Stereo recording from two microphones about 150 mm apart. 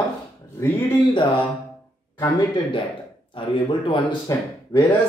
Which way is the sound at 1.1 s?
35° left (ahead or behind).